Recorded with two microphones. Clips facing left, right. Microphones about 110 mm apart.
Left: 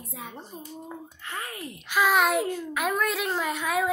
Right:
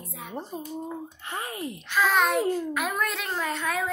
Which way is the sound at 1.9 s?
10° left (ahead or behind).